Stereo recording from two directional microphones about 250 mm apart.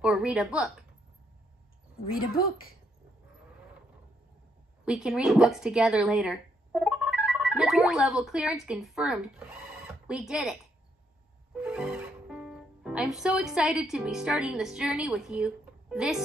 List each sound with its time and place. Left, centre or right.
0.0 s a woman's voice: centre
2.1 s speech: left
4.8 s speech: centre